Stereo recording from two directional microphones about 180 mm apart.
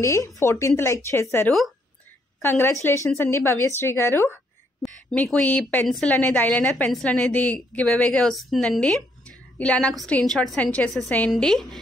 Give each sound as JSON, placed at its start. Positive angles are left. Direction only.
{"t": 0.0, "sound": "a woman's voice", "side_deg": 15}